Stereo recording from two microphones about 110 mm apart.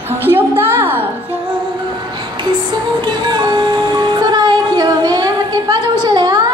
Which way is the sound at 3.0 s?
40° right (ahead or behind).